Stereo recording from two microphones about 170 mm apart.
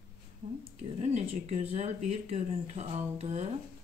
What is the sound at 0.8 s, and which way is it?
Speech, 40° right (ahead or behind).